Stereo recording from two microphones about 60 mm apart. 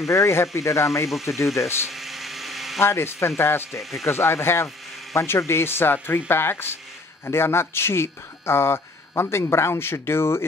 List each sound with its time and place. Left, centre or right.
0.1 s speech: left
1.9 s a sound: centre
2.8 s speech: left